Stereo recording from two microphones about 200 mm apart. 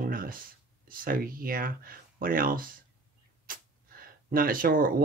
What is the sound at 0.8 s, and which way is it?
Speech, 45° right (ahead or behind).